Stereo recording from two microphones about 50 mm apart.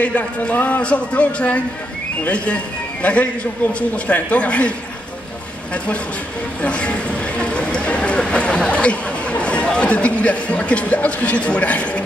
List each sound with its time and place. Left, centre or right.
0.0 s a man's voice: left
6.6 s speech: left